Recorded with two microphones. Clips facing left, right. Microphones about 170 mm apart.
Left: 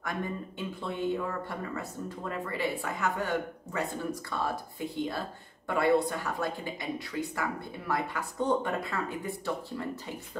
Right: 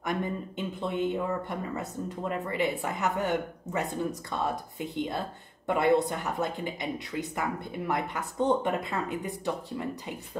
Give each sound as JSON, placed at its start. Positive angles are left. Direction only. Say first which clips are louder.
{"t": 0.7, "sound": "speech", "louder": "right 2 dB", "side_deg": -20}